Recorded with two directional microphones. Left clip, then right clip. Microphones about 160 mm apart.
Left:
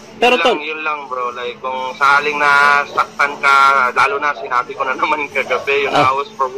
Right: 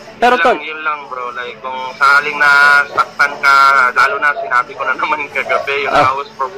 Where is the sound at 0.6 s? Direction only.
30° left (ahead or behind).